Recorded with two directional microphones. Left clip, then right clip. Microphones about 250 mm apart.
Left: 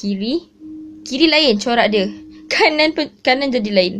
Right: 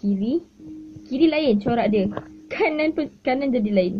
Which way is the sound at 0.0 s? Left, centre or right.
Centre.